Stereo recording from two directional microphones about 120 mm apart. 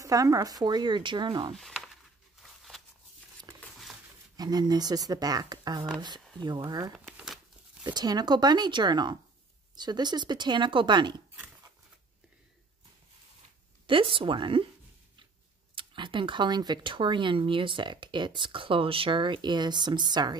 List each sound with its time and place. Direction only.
0.0 s speech: 30° right (ahead or behind)
1.5 s speech: centre (ahead or behind)
2.4 s a sound: centre (ahead or behind)
4.4 s speech: 35° right (ahead or behind)
7.1 s crumpling: centre (ahead or behind)
7.8 s speech: 35° right (ahead or behind)
13.8 s speech: 45° right (ahead or behind)
15.7 s speech: 45° right (ahead or behind)